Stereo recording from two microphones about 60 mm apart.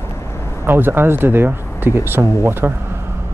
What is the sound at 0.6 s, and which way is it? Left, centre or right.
Speech, right.